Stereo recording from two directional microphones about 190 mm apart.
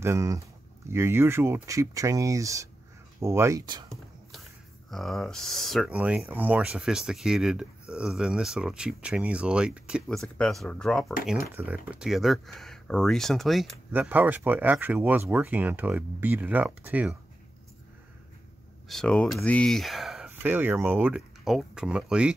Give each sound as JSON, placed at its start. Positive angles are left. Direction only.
{"t": 0.0, "sound": "speech", "side_deg": -15}
{"t": 4.9, "sound": "speech", "side_deg": 0}
{"t": 11.5, "sound": "speech", "side_deg": -10}
{"t": 18.9, "sound": "speech", "side_deg": 5}